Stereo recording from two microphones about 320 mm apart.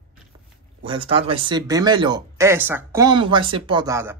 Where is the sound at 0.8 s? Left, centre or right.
Centre.